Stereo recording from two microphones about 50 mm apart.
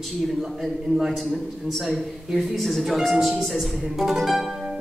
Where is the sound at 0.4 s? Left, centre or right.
Centre.